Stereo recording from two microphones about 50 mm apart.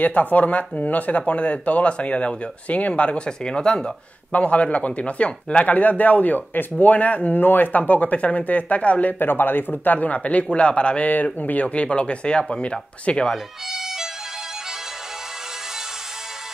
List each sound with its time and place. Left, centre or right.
0.0 s speech: left; by 3.9 s centre
4.3 s speech: left
9.2 s speech: left
11.4 s speech: left; by 13.3 s centre
13.7 s music: centre